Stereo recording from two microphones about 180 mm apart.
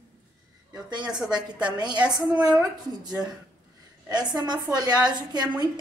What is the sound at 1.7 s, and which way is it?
Speech, 25° right (ahead or behind).